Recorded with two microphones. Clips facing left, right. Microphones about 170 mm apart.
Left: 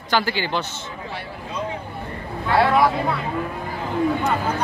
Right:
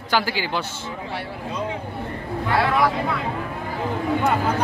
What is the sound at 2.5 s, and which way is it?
Speech, 25° left (ahead or behind).